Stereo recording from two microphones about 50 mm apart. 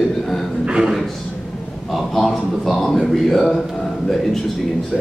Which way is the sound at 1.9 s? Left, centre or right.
Centre.